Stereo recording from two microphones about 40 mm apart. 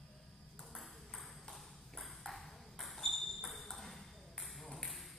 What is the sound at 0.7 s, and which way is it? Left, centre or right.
Ping, centre.